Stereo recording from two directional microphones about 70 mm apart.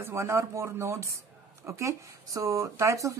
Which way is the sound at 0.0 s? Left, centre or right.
Right.